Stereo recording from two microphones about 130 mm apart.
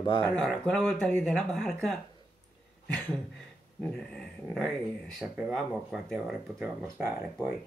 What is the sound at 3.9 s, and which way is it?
Speech, 5° left (ahead or behind).